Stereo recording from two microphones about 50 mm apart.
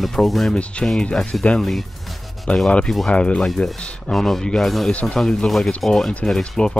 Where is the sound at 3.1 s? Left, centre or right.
Left.